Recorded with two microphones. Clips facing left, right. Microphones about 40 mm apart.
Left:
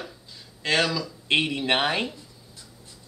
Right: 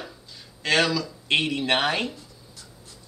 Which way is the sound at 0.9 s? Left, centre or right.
Centre.